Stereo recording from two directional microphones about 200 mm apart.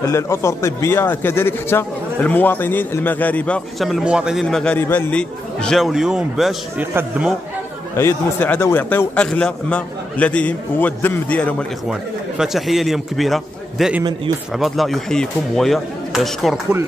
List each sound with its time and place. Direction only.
0.1 s speech: 15° left (ahead or behind); by 7.2 s 10° right (ahead or behind)
8.0 s a man's voice: 10° left (ahead or behind)